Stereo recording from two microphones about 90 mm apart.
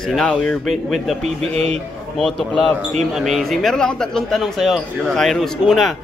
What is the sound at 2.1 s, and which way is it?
Speech, 5° left (ahead or behind).